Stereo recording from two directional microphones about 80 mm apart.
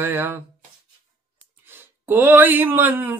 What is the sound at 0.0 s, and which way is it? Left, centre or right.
Speech, right.